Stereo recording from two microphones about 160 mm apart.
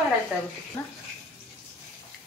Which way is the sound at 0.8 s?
15° left (ahead or behind).